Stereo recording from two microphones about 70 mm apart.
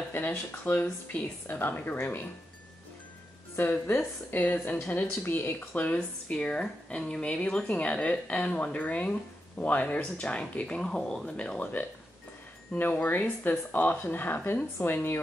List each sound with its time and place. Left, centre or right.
0.1 s speech: left
3.5 s speech: left
5.9 s a woman's voice: centre